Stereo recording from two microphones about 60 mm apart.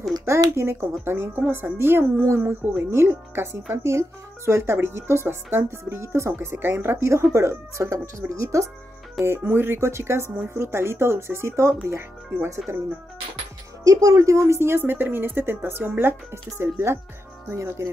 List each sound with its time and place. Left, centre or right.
0.2 s a woman's voice: right
6.5 s speech: right
9.2 s speech: right
13.8 s a woman's voice: right